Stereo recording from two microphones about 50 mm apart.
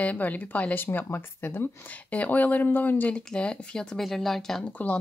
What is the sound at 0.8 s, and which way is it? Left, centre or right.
Speech, left.